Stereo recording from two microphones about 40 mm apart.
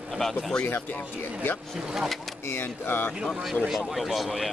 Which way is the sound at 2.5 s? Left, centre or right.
Left.